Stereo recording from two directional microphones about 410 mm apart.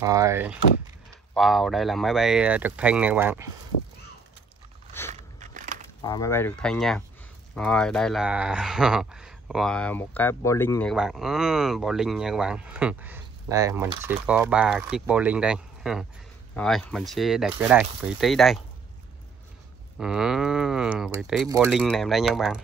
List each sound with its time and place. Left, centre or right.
0.0 s speech: centre
5.1 s a sound: centre
6.0 s speech: centre
20.0 s speech: centre